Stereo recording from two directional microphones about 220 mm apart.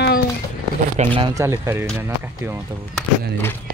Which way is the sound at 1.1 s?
15° right (ahead or behind).